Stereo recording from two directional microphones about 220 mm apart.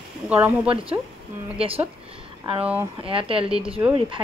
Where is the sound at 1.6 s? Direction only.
25° right (ahead or behind).